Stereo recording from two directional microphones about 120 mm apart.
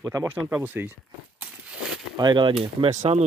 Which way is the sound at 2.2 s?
40° right (ahead or behind).